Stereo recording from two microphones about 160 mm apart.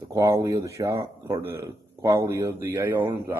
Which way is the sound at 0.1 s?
20° right (ahead or behind).